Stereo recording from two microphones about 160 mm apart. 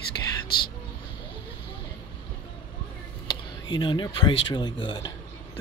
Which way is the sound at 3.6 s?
30° left (ahead or behind).